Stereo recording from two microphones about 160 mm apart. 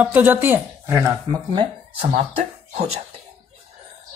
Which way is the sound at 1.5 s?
35° right (ahead or behind).